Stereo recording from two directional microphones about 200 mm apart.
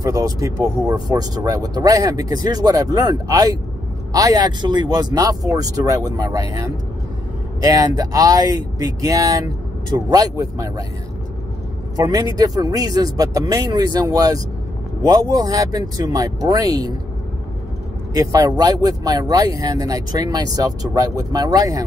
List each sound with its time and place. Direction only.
0.0 s speech: 20° right (ahead or behind)
7.7 s speech: 20° right (ahead or behind)
12.0 s speech: 20° right (ahead or behind)
18.1 s speech: 20° right (ahead or behind)